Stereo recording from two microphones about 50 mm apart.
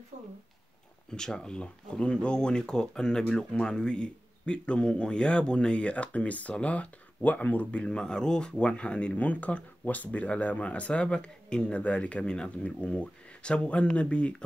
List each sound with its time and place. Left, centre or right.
1.1 s speech: centre